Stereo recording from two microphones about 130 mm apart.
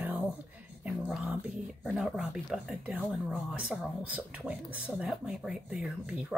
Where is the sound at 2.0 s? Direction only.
5° right (ahead or behind).